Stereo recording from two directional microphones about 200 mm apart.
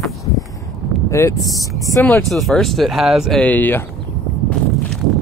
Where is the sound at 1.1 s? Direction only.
15° left (ahead or behind).